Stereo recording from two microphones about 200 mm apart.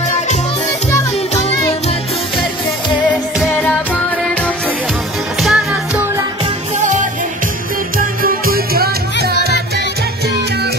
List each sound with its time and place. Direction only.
5.4 s music: centre (ahead or behind)
8.0 s music: 45° right (ahead or behind)